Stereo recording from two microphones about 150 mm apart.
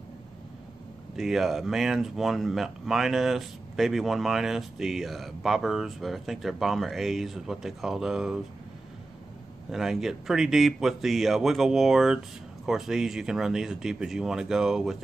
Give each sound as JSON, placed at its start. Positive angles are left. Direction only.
{"t": 1.1, "sound": "speech", "side_deg": 0}
{"t": 9.7, "sound": "speech", "side_deg": -5}